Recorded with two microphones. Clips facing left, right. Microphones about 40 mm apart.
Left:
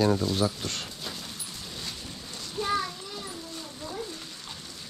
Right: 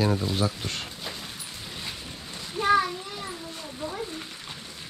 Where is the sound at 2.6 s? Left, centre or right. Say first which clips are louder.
Right 7 dB; right.